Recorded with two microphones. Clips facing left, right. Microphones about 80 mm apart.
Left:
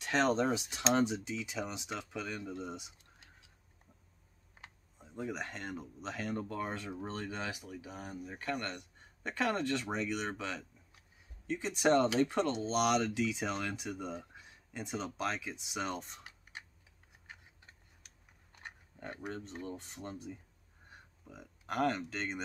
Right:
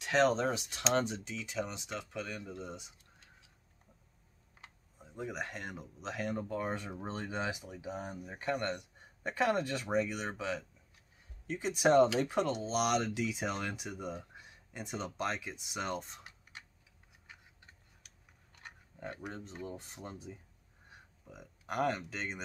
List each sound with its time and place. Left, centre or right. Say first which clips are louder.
0.0 s speech: right 1 dB; centre
2.6 s speech: left 2 dB; centre
5.1 s speech: even; centre
19.4 s speech: even; centre